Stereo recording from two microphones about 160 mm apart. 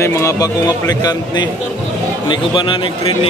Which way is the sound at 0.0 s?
20° left (ahead or behind).